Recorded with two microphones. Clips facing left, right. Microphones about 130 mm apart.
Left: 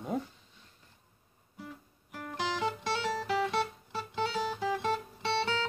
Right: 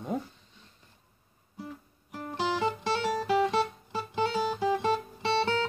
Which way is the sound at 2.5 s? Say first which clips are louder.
Right 4 dB; 10° right (ahead or behind).